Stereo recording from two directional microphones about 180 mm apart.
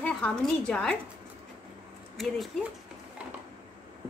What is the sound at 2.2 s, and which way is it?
Speech, centre (ahead or behind).